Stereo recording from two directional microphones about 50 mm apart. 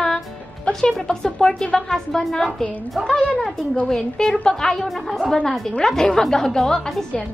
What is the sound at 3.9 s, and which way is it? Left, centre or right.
A woman's voice, centre.